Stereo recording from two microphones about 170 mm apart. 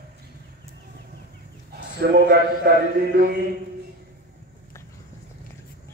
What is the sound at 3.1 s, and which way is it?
Speech, 70° right (ahead or behind).